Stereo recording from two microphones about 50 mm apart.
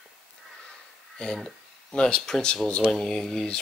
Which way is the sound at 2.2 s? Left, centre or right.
Centre.